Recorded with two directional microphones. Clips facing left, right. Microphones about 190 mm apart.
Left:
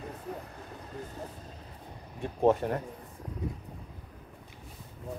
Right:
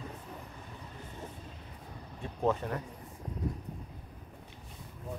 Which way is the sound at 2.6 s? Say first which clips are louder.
Left 5 dB; 30° left (ahead or behind).